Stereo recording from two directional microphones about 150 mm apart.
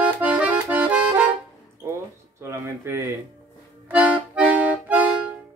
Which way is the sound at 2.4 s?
15° right (ahead or behind).